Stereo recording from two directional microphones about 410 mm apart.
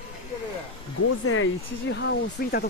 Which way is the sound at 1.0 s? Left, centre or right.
Left.